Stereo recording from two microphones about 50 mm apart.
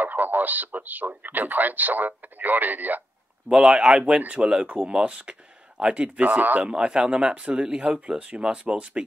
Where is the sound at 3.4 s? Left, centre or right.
Centre.